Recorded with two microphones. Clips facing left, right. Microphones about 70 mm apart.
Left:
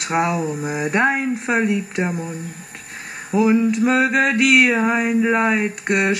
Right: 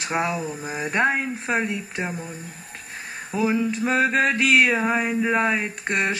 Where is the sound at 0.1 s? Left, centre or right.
Centre.